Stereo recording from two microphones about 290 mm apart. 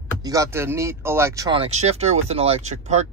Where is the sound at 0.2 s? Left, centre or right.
Centre.